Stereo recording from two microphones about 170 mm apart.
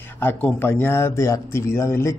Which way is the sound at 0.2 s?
10° left (ahead or behind).